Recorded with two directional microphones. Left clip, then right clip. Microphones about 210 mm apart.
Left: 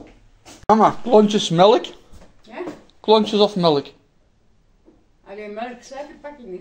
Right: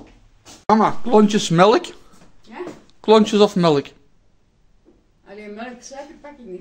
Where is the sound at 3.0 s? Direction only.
35° right (ahead or behind).